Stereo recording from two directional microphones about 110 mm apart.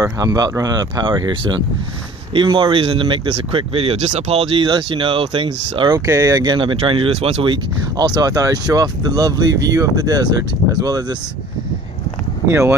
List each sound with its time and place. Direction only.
0.0 s speech: 35° right (ahead or behind); by 4.6 s 65° right (ahead or behind)
4.6 s speech: 50° right (ahead or behind)
5.9 s speech: 30° right (ahead or behind)
6.5 s speech: 50° right (ahead or behind); by 7.4 s 70° right (ahead or behind)
7.4 s speech: 45° right (ahead or behind)
12.4 s speech: 25° right (ahead or behind)